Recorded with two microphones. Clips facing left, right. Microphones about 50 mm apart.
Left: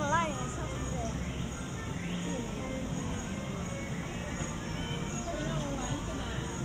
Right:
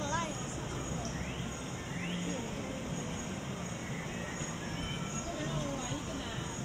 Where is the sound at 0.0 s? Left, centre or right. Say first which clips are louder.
Left 6 dB; left.